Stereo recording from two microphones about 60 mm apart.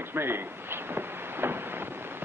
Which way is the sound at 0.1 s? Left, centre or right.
Right.